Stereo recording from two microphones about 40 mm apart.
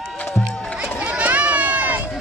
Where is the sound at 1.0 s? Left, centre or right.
Right.